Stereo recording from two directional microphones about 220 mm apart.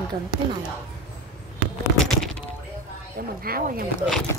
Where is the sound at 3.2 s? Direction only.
40° right (ahead or behind).